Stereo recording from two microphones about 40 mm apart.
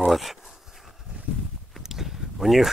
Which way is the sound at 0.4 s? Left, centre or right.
Centre.